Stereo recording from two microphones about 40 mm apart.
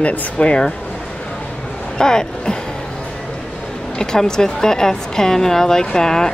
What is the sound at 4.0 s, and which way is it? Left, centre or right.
A woman's voice, centre.